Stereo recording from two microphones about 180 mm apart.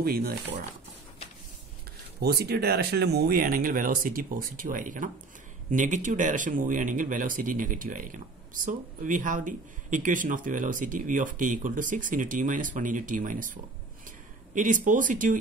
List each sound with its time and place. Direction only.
0.0 s speech: 60° right (ahead or behind)
2.2 s speech: 60° right (ahead or behind)
14.0 s a sound: 45° right (ahead or behind)